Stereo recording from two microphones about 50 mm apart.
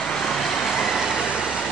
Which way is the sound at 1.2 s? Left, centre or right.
Centre.